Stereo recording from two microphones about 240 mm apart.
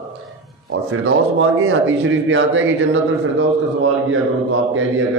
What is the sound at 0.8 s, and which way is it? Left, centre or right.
A man's voice, right.